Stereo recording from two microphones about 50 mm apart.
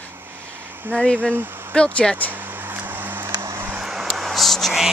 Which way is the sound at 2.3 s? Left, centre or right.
Right.